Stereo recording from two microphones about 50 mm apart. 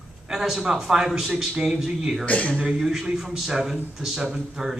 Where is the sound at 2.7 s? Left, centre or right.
Centre.